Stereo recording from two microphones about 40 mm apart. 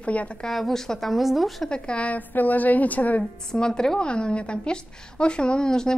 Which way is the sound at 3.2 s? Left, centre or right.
Centre.